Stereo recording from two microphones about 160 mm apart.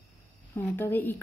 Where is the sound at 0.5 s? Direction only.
15° left (ahead or behind).